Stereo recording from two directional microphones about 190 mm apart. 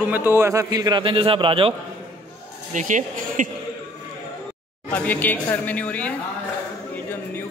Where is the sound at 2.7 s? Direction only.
40° right (ahead or behind).